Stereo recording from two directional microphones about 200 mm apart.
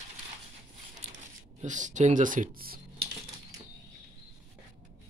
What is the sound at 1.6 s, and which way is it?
Speech, 40° right (ahead or behind).